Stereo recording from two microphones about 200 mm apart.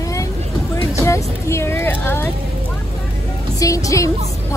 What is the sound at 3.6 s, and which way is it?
Speech, 15° left (ahead or behind).